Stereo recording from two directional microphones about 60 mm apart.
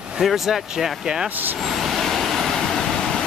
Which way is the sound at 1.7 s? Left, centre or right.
Centre.